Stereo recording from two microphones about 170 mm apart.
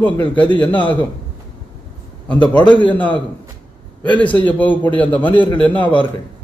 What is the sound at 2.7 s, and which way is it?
Speech, 10° left (ahead or behind).